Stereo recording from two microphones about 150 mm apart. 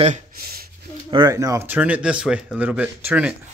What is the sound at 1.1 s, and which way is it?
Speech, 25° right (ahead or behind).